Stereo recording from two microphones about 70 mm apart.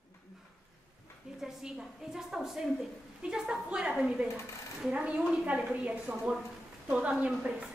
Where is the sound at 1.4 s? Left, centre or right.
Centre.